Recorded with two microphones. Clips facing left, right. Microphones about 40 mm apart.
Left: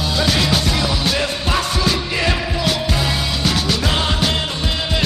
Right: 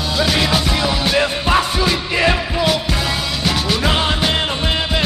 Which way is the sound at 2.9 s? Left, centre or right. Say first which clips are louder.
Even; centre.